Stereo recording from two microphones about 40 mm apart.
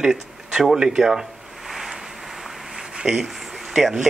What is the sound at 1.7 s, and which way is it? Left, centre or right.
Waves, centre.